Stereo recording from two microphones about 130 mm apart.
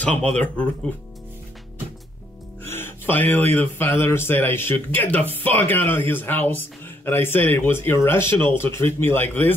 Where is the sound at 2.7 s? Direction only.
15° left (ahead or behind).